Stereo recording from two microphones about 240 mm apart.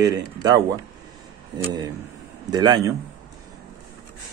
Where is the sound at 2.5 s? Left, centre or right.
Centre.